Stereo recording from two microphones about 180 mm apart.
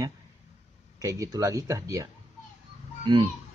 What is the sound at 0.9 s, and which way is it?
Speech, 20° right (ahead or behind).